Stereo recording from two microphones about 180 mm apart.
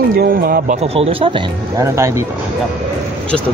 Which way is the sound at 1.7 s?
15° right (ahead or behind).